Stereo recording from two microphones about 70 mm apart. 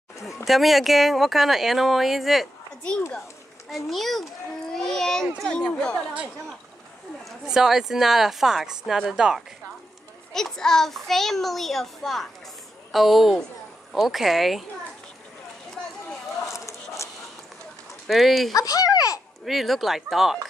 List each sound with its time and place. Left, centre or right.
0.5 s a child's voice: centre
3.7 s a child's voice: centre
7.4 s a child's voice: centre
10.3 s a child's voice: centre
16.5 s a sound: left
18.0 s a child's voice: centre
18.5 s speech: left
19.4 s a child's voice: centre